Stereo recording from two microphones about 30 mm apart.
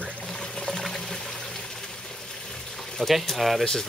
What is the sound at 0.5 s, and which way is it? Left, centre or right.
Pour, centre.